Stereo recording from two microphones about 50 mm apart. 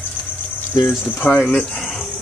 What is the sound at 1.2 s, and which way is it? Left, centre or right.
Speech, left.